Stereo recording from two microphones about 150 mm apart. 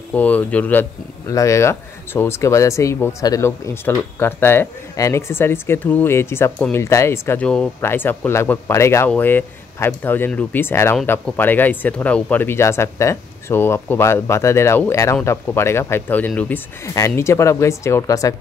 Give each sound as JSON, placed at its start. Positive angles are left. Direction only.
{"t": 0.1, "sound": "speech", "side_deg": 10}